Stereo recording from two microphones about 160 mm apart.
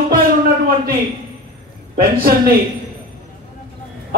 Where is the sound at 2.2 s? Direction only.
65° right (ahead or behind).